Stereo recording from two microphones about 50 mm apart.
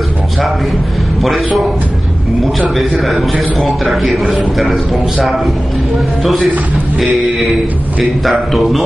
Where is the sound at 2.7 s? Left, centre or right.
Centre.